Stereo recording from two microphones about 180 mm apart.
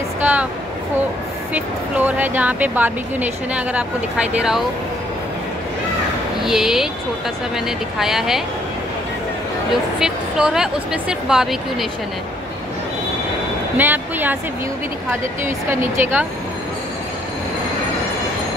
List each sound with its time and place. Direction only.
0.2 s a woman's voice: 10° right (ahead or behind)
1.5 s speech: 10° right (ahead or behind)
6.4 s speech: centre (ahead or behind)
9.9 s speech: 5° right (ahead or behind)
13.7 s speech: 10° right (ahead or behind)
15.4 s speech: 15° right (ahead or behind)